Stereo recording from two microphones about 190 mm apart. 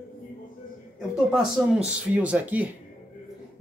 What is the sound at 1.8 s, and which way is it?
Speech, 5° right (ahead or behind).